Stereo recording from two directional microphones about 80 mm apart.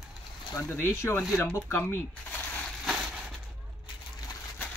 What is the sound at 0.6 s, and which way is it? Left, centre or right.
Speech, left.